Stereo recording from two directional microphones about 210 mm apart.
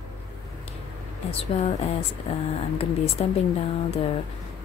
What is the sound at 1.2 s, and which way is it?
Speech, 30° left (ahead or behind).